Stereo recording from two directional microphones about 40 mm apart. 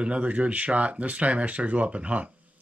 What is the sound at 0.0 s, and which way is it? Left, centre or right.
Speech, right.